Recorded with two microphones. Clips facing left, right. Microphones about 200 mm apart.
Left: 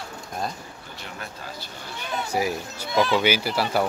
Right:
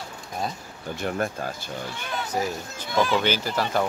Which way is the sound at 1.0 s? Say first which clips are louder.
Right 12 dB; 50° right (ahead or behind).